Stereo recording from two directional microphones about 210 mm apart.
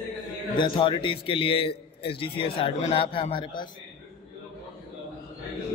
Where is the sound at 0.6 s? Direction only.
25° left (ahead or behind).